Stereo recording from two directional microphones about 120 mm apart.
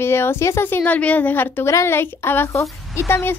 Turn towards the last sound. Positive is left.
turn(degrees=20)  # may be behind; listen again after turning